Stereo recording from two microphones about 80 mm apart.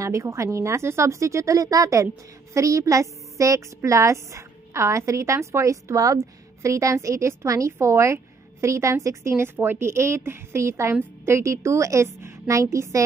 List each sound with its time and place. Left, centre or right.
0.0 s a woman's voice: right